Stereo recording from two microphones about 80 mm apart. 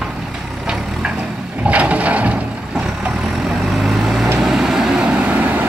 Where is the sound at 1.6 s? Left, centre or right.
Centre.